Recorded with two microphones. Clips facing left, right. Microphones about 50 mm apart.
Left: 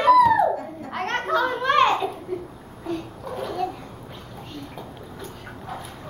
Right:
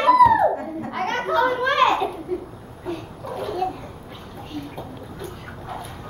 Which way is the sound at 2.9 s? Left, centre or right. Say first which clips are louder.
Even; centre.